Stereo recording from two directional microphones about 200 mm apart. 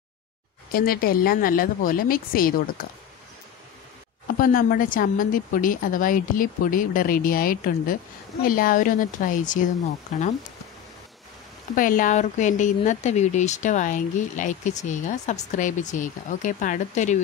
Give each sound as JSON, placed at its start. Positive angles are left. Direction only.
{"t": 0.7, "sound": "a woman's voice", "side_deg": 45}
{"t": 4.4, "sound": "a woman's voice", "side_deg": 45}
{"t": 11.7, "sound": "speech", "side_deg": 45}